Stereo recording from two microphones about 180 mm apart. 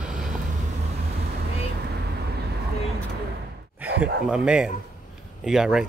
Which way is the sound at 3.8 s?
10° right (ahead or behind).